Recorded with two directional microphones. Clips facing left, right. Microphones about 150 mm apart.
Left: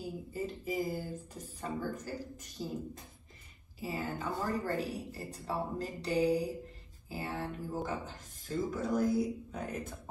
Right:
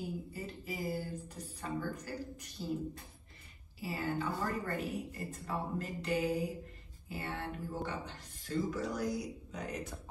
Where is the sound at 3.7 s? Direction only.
40° left (ahead or behind).